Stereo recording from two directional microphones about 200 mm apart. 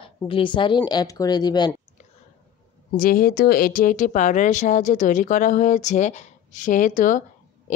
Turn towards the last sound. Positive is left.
turn(degrees=40)  # may be behind; listen again after turning